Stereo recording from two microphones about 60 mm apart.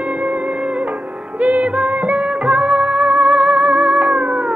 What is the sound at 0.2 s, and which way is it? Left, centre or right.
Music, right.